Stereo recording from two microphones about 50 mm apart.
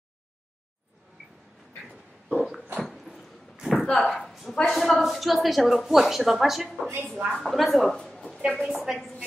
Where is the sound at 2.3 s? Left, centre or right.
Centre.